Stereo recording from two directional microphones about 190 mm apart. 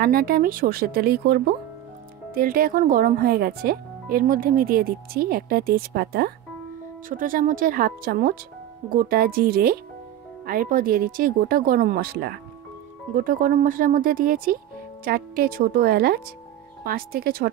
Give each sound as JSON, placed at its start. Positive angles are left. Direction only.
{"t": 0.0, "sound": "speech", "side_deg": -50}